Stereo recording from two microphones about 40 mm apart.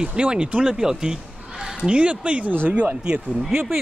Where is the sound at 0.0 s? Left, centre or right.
Right.